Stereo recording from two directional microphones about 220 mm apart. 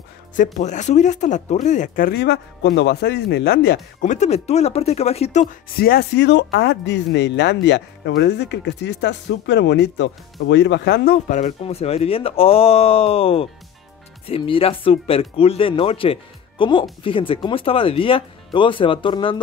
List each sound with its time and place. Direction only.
0.4 s speech: 35° left (ahead or behind)